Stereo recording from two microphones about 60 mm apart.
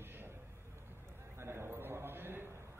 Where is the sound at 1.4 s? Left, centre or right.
Right.